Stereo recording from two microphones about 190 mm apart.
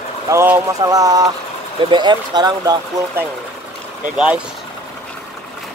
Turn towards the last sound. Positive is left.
turn(degrees=-5)  # may be behind; listen again after turning